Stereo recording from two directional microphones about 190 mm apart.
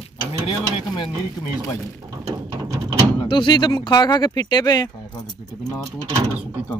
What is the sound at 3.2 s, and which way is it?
Speech, 25° left (ahead or behind).